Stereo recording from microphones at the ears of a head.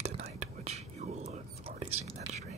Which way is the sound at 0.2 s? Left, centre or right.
Right.